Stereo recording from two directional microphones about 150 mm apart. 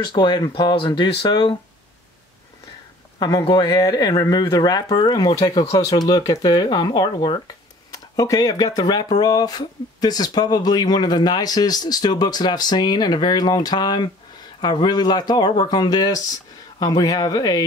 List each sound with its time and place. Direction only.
0.0 s speech: 30° left (ahead or behind)
3.2 s speech: 25° left (ahead or behind)